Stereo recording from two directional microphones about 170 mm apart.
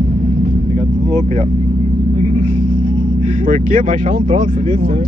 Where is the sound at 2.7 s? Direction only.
55° right (ahead or behind).